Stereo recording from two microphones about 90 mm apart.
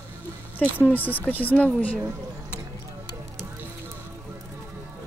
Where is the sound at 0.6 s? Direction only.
20° left (ahead or behind).